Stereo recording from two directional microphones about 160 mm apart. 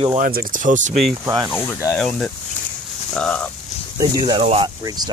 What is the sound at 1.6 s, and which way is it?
Speech, 20° left (ahead or behind).